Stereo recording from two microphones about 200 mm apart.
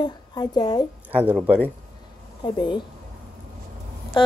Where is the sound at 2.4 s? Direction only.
25° left (ahead or behind).